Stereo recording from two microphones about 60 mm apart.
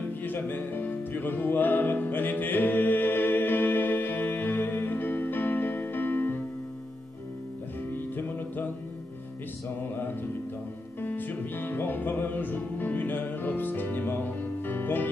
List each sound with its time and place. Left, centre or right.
0.2 s music: left
7.9 s music: left
11.0 s music: left